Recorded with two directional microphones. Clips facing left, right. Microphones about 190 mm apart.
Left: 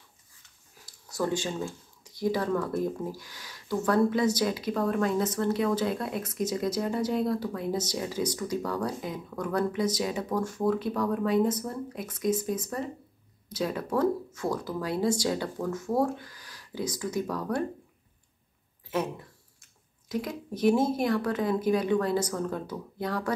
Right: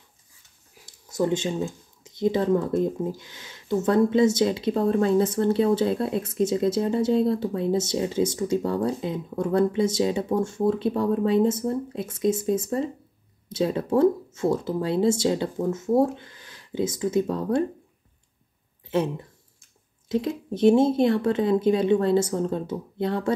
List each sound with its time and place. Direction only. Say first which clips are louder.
0.8 s speech: right 5 dB; 20° right (ahead or behind)
18.9 s speech: right 6 dB; 30° right (ahead or behind)